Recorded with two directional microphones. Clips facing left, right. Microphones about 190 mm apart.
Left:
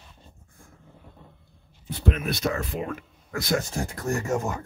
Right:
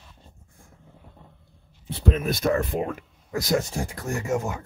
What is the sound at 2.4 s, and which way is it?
Speech, 50° right (ahead or behind).